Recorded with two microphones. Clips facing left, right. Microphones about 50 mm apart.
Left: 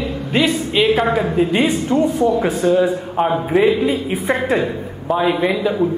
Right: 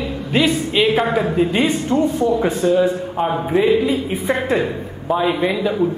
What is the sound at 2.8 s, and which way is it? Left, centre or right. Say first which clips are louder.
Speech: left 1 dB; centre.